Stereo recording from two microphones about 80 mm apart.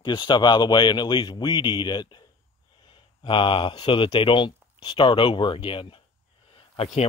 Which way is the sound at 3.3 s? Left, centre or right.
Left.